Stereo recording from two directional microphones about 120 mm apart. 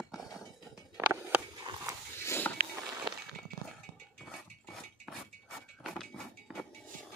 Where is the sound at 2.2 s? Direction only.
20° left (ahead or behind).